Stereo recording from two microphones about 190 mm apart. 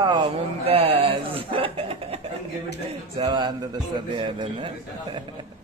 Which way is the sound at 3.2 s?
25° right (ahead or behind).